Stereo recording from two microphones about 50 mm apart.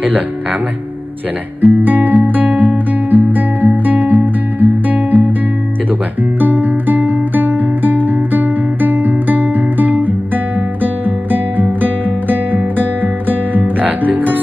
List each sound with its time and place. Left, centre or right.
1.6 s speech: right
2.2 s music: right
6.4 s guitar: right